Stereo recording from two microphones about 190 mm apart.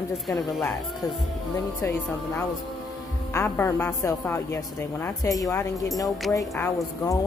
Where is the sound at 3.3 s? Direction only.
15° left (ahead or behind).